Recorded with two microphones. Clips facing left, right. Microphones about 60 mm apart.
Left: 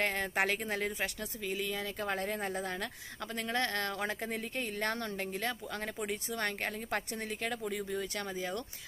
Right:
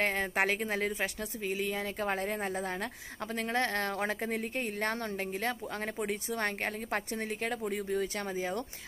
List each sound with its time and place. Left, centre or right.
0.0 s speech: right
6.3 s speech: right